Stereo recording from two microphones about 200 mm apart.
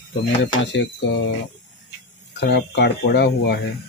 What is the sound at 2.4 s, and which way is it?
Speech, 55° left (ahead or behind).